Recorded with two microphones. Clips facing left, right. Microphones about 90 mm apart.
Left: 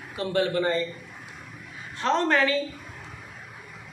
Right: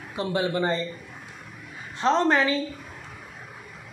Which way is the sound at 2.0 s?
20° right (ahead or behind).